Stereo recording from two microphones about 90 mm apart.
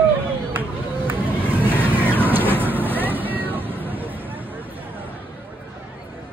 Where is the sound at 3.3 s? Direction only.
20° right (ahead or behind).